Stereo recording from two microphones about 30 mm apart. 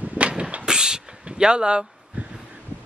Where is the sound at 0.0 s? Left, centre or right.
Right.